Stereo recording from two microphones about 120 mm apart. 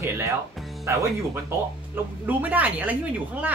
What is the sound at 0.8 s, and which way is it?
Speech, 25° right (ahead or behind).